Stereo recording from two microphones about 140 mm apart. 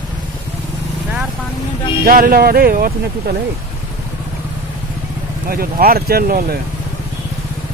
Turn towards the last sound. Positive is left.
turn(degrees=-90)